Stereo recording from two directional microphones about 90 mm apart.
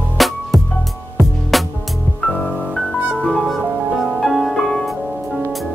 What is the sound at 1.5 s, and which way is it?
Music, centre (ahead or behind).